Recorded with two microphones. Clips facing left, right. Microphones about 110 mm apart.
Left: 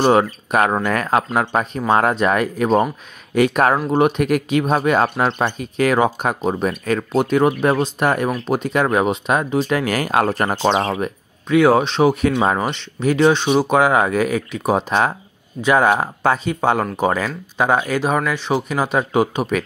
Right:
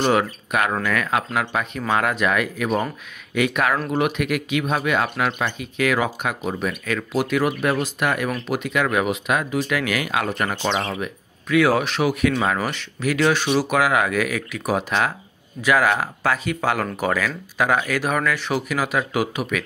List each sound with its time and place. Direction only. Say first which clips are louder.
0.0 s speech: left 5 dB; 35° left (ahead or behind)